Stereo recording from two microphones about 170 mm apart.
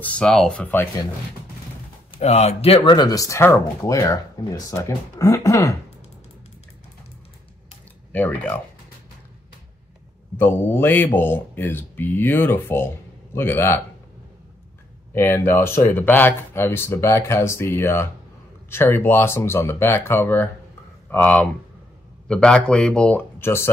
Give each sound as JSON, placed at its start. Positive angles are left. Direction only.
{"t": 0.0, "sound": "speech", "side_deg": 5}
{"t": 2.1, "sound": "speech", "side_deg": 40}
{"t": 8.1, "sound": "speech", "side_deg": 10}
{"t": 10.3, "sound": "speech", "side_deg": 10}
{"t": 15.1, "sound": "speech", "side_deg": 15}